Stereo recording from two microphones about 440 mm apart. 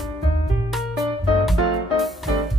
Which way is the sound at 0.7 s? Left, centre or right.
Centre.